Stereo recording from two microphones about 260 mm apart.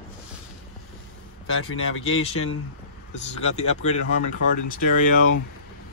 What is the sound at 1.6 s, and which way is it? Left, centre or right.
Speech, left.